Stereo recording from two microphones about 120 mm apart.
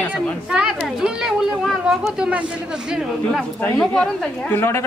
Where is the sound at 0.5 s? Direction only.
5° right (ahead or behind).